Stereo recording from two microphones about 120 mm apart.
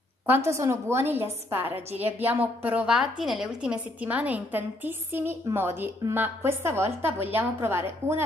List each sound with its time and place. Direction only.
0.3 s a woman's voice: 25° right (ahead or behind)